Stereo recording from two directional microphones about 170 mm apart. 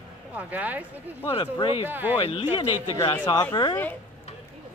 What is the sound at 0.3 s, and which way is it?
Speech, 10° right (ahead or behind).